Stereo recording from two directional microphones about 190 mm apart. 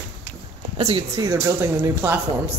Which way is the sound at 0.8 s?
30° right (ahead or behind).